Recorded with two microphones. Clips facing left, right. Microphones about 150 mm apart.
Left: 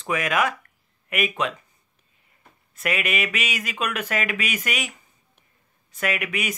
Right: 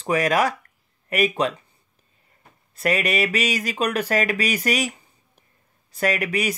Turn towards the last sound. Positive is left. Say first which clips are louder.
# right 4 dB
turn(degrees=-35)  # may be behind; listen again after turning